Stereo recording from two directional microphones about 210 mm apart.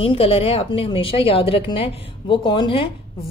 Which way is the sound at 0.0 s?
25° left (ahead or behind).